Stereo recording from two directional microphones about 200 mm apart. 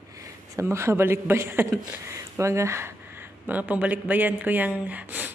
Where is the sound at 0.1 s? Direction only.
15° right (ahead or behind).